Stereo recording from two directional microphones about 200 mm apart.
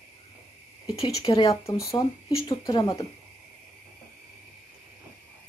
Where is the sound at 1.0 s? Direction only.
25° left (ahead or behind).